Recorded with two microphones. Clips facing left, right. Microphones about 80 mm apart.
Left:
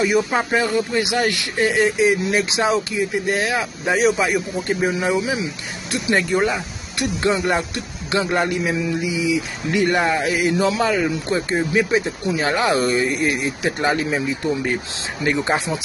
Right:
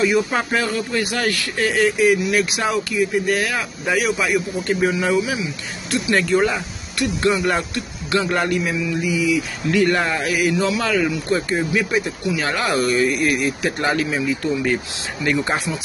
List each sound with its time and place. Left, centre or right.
0.0 s speech: centre